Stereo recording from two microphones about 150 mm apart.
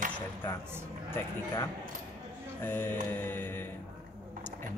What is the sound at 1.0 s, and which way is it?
Speech, 15° left (ahead or behind).